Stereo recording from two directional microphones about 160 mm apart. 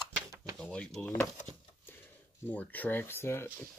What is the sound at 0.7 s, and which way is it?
Speech, 5° left (ahead or behind).